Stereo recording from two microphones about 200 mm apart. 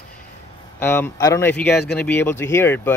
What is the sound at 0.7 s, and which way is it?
Speech, 10° left (ahead or behind).